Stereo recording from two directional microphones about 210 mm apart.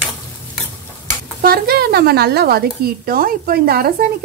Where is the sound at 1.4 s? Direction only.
45° right (ahead or behind).